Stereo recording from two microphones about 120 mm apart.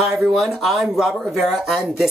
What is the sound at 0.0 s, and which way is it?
Speech, 5° right (ahead or behind).